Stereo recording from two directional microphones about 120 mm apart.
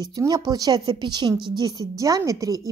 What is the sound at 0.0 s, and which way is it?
A woman's voice, 30° right (ahead or behind).